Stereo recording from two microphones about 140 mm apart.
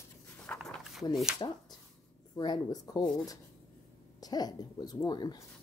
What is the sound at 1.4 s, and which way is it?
A woman's voice, 30° left (ahead or behind).